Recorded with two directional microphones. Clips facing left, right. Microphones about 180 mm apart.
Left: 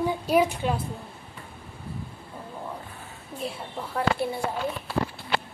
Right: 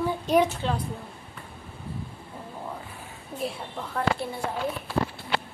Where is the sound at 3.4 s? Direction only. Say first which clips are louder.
Right 1 dB; 5° left (ahead or behind).